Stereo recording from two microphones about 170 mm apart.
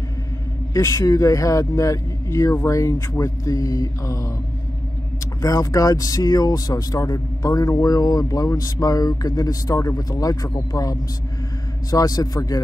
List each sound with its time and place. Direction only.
0.7 s speech: 20° left (ahead or behind)
5.4 s speech: 20° left (ahead or behind)